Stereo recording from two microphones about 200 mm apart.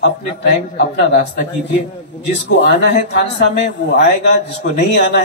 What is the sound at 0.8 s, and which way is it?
Speech, 55° left (ahead or behind).